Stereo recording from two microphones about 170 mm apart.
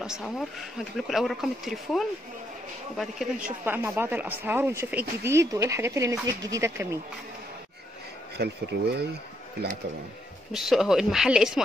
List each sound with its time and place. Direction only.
0.0 s speech: centre (ahead or behind)
3.6 s speech: 10° right (ahead or behind)
8.4 s speech: 75° right (ahead or behind)
10.5 s speech: centre (ahead or behind)